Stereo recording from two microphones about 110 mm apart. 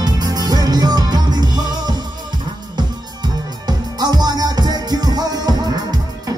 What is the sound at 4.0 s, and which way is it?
Music, 40° right (ahead or behind).